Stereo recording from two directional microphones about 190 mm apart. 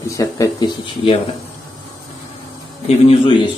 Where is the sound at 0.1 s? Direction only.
15° left (ahead or behind).